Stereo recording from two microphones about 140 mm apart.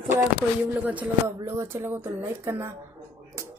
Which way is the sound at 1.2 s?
20° right (ahead or behind).